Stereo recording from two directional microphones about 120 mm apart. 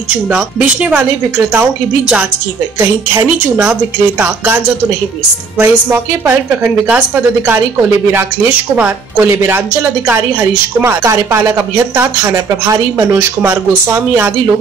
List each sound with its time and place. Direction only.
0.3 s a woman's voice: 10° right (ahead or behind)
2.8 s speech: 25° right (ahead or behind)
5.6 s a woman's voice: 20° right (ahead or behind)
8.7 s a woman's voice: 15° right (ahead or behind)